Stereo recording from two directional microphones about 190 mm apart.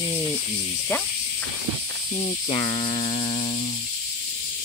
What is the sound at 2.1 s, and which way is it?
Speech, 25° left (ahead or behind).